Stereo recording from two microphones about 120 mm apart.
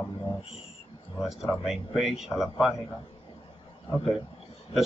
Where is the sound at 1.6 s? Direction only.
5° right (ahead or behind).